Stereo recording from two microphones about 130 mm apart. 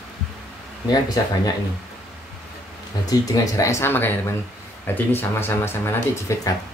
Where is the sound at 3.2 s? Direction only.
25° left (ahead or behind).